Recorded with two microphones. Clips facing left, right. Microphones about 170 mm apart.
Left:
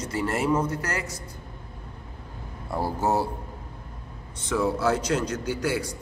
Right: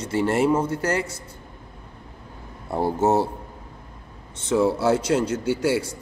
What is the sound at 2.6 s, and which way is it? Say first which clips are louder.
Speech: right 5 dB; 25° right (ahead or behind).